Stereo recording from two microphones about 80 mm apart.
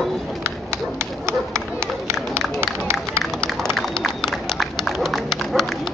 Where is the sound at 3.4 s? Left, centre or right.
Centre.